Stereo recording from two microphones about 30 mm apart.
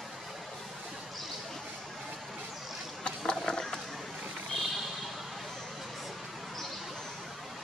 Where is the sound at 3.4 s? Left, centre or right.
Centre.